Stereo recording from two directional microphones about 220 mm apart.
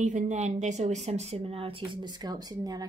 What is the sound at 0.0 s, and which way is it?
A woman's voice, 35° right (ahead or behind).